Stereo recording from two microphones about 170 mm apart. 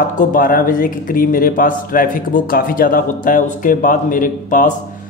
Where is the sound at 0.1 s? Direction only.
50° left (ahead or behind).